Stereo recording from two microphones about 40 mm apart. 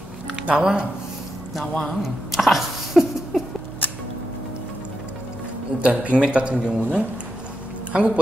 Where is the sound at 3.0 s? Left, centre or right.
Centre.